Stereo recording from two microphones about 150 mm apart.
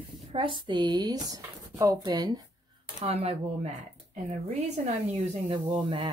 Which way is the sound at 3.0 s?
45° right (ahead or behind).